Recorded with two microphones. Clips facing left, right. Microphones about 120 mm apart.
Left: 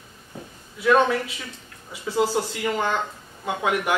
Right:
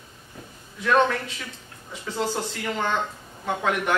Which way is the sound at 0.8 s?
10° left (ahead or behind).